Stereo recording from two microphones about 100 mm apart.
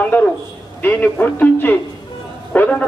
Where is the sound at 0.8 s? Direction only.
15° left (ahead or behind).